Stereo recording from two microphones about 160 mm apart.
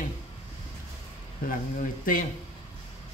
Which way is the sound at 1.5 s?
60° left (ahead or behind).